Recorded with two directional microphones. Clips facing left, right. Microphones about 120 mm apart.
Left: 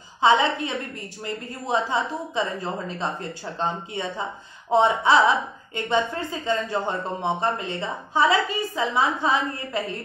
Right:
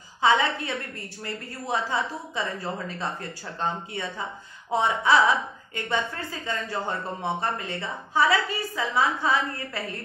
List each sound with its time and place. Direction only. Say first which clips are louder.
0.2 s speech: left 3 dB; 20° left (ahead or behind)